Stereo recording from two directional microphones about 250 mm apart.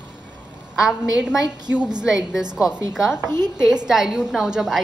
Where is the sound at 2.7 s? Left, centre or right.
Centre.